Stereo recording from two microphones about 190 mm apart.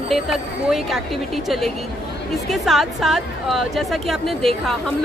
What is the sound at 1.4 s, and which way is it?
A woman's voice, centre (ahead or behind).